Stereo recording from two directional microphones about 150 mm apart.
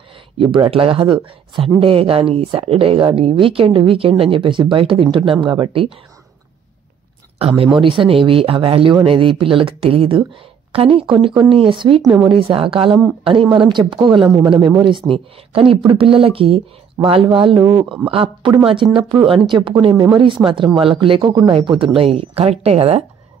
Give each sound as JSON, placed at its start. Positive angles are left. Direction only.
{"t": 0.4, "sound": "speech", "side_deg": -35}
{"t": 7.3, "sound": "speech", "side_deg": -40}
{"t": 17.6, "sound": "speech", "side_deg": -20}
{"t": 18.0, "sound": "speech", "side_deg": -35}